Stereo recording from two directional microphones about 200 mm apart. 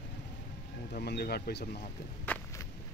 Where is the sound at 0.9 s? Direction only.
50° left (ahead or behind).